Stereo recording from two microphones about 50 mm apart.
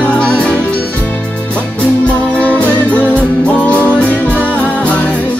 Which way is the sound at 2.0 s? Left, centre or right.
Left.